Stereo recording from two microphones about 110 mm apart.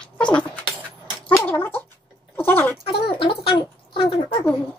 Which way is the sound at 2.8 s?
50° left (ahead or behind).